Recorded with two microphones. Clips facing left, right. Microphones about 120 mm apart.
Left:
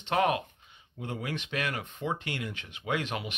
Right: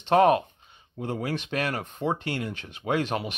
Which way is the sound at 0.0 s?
35° right (ahead or behind).